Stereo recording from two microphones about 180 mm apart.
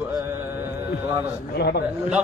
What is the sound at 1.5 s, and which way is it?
Speech, 65° left (ahead or behind).